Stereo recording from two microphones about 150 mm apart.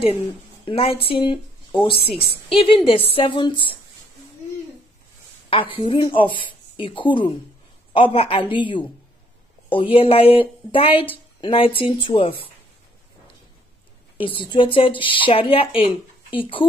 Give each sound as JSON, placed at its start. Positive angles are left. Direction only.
{"t": 0.7, "sound": "a woman's voice", "side_deg": 40}
{"t": 5.5, "sound": "a woman's voice", "side_deg": 35}
{"t": 14.1, "sound": "a woman's voice", "side_deg": 35}